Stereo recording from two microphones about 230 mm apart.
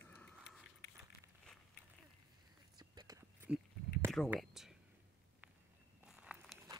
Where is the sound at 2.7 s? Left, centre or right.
Centre.